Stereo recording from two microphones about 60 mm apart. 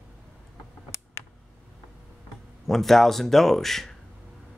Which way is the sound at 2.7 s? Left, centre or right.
Centre.